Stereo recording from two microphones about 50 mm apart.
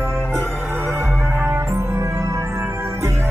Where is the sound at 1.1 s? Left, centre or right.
Right.